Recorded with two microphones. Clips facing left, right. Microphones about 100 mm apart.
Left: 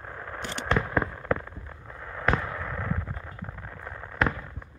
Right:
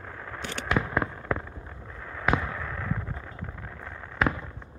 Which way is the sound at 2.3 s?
5° left (ahead or behind).